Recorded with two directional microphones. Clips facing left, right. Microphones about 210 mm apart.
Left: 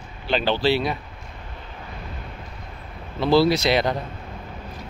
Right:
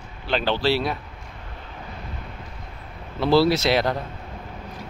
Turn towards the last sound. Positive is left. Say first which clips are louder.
# even
turn(degrees=-5)  # may be behind; listen again after turning